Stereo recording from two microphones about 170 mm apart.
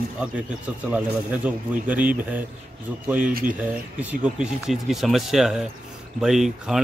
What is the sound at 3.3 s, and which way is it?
Speech, 55° right (ahead or behind).